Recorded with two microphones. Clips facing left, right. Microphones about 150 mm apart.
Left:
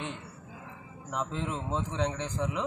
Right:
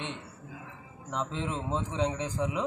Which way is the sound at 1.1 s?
Centre (ahead or behind).